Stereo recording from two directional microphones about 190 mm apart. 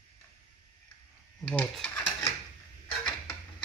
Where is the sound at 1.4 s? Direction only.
5° left (ahead or behind).